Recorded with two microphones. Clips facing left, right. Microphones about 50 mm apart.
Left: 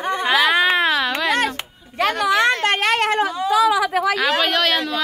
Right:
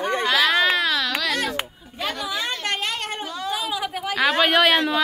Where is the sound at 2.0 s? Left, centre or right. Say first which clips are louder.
Left 10 dB; left.